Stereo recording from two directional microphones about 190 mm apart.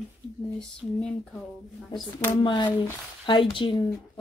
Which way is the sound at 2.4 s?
25° left (ahead or behind).